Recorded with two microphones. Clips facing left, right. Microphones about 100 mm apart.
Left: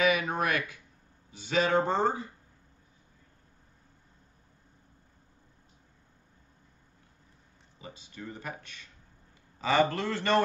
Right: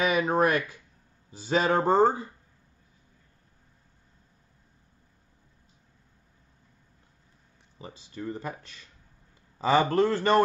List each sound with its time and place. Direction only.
0.0 s speech: 35° right (ahead or behind)
7.8 s speech: 35° right (ahead or behind)